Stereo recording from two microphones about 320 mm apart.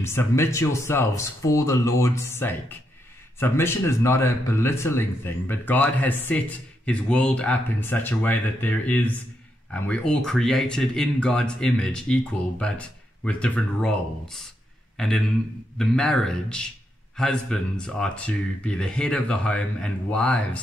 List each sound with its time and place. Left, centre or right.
0.0 s speech: centre